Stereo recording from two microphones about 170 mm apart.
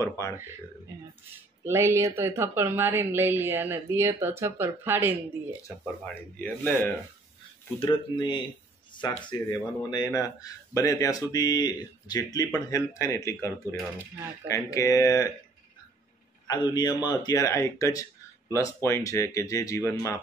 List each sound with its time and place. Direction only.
1.6 s a woman's voice: 15° right (ahead or behind)
6.0 s speech: 10° left (ahead or behind)
7.8 s speech: 30° left (ahead or behind)
16.4 s speech: 25° left (ahead or behind)